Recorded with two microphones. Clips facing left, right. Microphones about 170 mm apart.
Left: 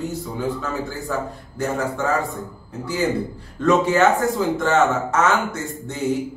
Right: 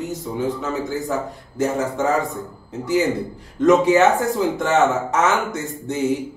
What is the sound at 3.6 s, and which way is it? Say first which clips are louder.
A man's voice: right 3 dB; 15° right (ahead or behind).